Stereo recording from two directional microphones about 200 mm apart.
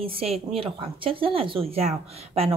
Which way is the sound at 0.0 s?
30° right (ahead or behind).